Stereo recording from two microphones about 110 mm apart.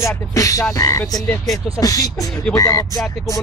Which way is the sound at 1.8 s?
35° left (ahead or behind).